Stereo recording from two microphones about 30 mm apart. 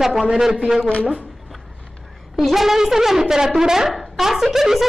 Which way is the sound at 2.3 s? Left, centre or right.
Centre.